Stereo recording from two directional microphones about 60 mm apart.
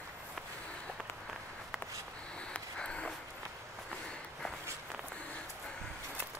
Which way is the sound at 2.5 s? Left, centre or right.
Centre.